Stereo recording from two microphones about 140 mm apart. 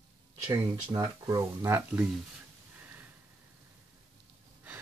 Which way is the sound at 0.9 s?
25° right (ahead or behind).